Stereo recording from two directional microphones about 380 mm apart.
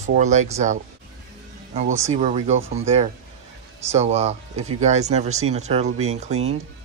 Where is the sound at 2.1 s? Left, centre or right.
Centre.